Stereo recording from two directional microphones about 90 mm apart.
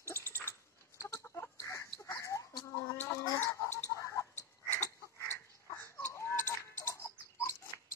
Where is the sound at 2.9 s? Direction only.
25° left (ahead or behind).